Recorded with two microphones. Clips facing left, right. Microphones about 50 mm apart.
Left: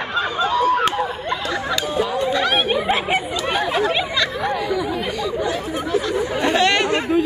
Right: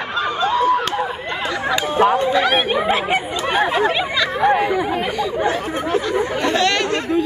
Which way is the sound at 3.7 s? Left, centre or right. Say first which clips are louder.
Right 2 dB; centre.